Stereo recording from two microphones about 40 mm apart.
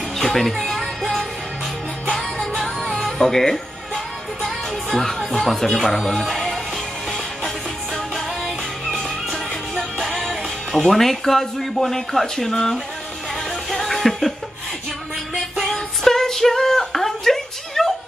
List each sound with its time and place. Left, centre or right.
0.2 s music: centre
5.3 s speech: centre
7.1 s music: centre
9.9 s speech: centre
13.7 s music: centre
15.6 s a sound: centre